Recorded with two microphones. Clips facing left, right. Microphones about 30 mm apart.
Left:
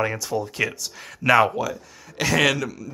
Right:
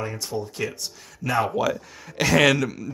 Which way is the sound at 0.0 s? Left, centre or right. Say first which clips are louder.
Left 5 dB; left.